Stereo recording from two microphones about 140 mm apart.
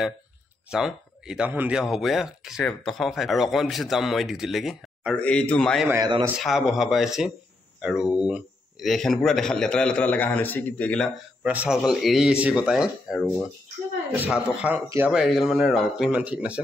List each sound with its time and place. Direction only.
0.7 s a man's voice: 5° right (ahead or behind)
5.9 s a man's voice: 30° right (ahead or behind)
6.4 s speech: centre (ahead or behind)
11.4 s speech: 10° right (ahead or behind)
14.3 s speech: 10° right (ahead or behind)